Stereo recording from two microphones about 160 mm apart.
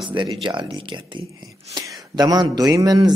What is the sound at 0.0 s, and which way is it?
A man's voice, 30° right (ahead or behind).